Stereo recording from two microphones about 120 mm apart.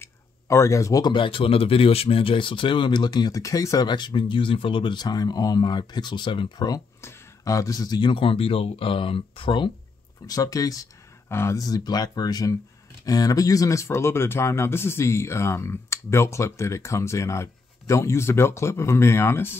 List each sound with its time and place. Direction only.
0.0 s a sound: 25° left (ahead or behind)
1.1 s speech: 45° left (ahead or behind)
7.0 s speech: 25° left (ahead or behind); by 9.7 s 45° left (ahead or behind)
10.2 s speech: 30° left (ahead or behind)